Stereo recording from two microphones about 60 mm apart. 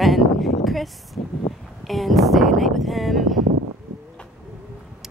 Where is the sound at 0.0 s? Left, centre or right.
Centre.